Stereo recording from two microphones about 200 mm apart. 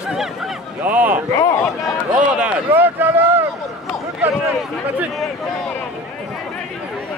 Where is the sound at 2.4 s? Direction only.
10° right (ahead or behind).